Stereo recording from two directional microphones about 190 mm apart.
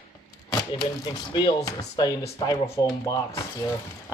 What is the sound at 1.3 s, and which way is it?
Speech, 20° left (ahead or behind).